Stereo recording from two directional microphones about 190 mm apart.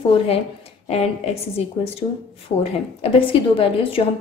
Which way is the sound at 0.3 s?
35° left (ahead or behind).